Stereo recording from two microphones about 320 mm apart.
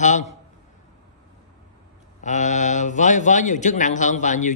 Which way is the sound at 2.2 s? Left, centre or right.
Left.